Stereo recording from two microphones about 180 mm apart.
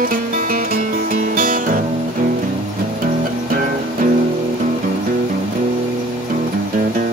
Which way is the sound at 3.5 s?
50° right (ahead or behind).